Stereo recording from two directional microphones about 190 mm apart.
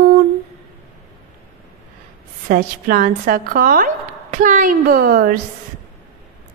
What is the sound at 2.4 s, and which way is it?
A woman's voice, 45° right (ahead or behind).